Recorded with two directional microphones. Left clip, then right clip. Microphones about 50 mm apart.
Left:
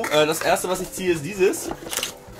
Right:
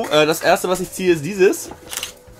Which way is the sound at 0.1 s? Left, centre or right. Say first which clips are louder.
Right 5 dB; right.